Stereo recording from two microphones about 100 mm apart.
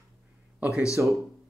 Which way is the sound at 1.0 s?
25° right (ahead or behind).